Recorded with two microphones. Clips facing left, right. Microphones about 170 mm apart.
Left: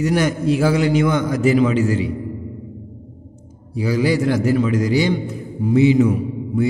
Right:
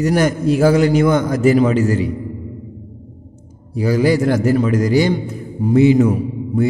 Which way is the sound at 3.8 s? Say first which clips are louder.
Right 3 dB; 45° right (ahead or behind).